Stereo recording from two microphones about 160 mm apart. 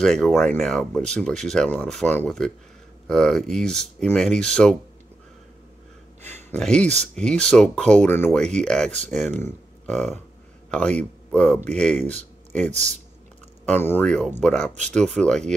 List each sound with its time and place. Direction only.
0.0 s speech: 5° left (ahead or behind)
6.5 s speech: 5° left (ahead or behind)
12.6 s speech: 45° right (ahead or behind)
13.7 s speech: 15° left (ahead or behind)